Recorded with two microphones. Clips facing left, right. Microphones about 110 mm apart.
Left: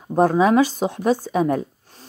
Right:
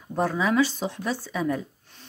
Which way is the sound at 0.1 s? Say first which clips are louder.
Left 8 dB; 45° left (ahead or behind).